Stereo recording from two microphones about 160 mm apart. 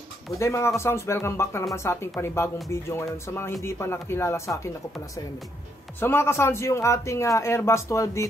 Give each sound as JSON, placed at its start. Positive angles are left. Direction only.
{"t": 0.4, "sound": "a man's voice", "side_deg": 15}
{"t": 5.9, "sound": "a man's voice", "side_deg": 15}